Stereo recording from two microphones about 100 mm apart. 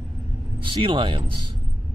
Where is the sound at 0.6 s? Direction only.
55° right (ahead or behind).